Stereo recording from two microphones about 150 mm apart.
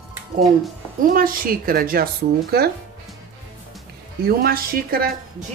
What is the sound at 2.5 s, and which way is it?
Speech, 90° right.